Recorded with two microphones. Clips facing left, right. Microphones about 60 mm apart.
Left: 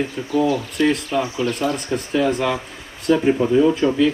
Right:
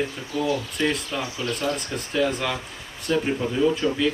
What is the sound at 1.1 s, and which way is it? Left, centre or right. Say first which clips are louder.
Speech: left 8 dB; left.